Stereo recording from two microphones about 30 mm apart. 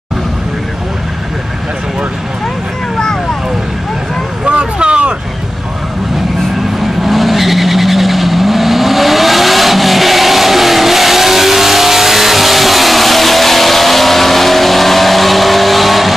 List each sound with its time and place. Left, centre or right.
4.5 s vehicle: right
6.8 s vehicle: centre